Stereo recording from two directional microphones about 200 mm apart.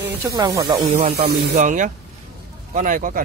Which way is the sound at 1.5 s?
40° right (ahead or behind).